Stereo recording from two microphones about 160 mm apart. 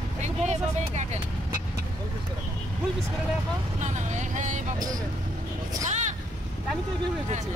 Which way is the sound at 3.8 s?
50° right (ahead or behind).